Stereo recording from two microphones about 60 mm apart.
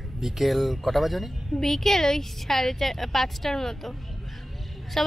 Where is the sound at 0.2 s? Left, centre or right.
Centre.